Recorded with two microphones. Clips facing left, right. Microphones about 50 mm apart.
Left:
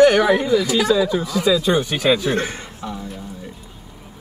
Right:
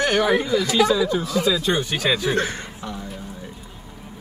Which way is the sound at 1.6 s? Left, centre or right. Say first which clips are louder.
Left 4 dB; left.